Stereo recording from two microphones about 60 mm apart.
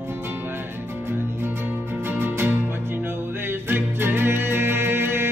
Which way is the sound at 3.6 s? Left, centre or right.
Right.